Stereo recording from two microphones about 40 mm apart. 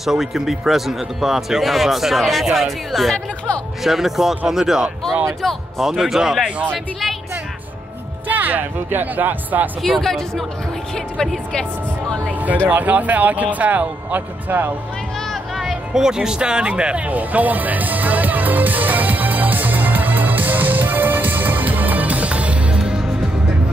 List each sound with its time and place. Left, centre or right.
0.0 s a man's voice: centre
8.3 s speech: right
9.8 s speech: centre
12.3 s speech: right
14.5 s speech: right
15.1 s a sound: centre
15.9 s speech: centre
17.0 s music: right
22.8 s music: centre